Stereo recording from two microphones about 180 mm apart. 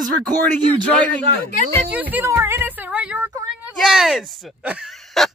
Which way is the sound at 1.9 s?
10° right (ahead or behind).